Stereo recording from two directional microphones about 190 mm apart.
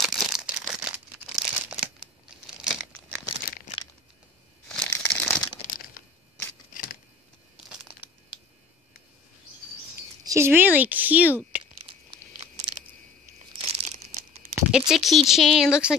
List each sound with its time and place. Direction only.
0.0 s crumpling: centre (ahead or behind)
4.6 s crumpling: 10° left (ahead or behind)
10.2 s a woman's voice: 15° right (ahead or behind)
13.6 s crumpling: 30° right (ahead or behind)
14.5 s speech: centre (ahead or behind)